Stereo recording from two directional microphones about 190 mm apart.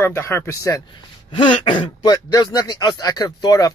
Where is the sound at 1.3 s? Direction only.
25° left (ahead or behind).